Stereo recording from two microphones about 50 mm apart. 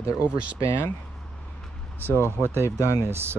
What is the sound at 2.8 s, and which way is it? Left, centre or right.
Speech, left.